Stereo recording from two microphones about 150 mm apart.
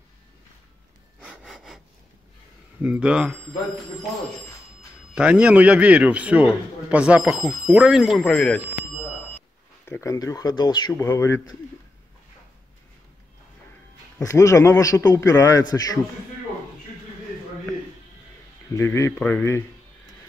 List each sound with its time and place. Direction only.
1.2 s breathing: centre (ahead or behind)
2.8 s speech: 5° right (ahead or behind)
5.1 s a man's voice: 10° right (ahead or behind)
9.8 s a man's voice: 20° left (ahead or behind)
11.0 s speech: 15° left (ahead or behind)
14.1 s a man's voice: 20° left (ahead or behind)
18.8 s speech: 20° left (ahead or behind)